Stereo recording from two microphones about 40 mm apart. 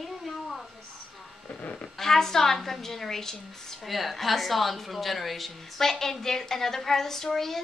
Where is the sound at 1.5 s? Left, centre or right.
Left.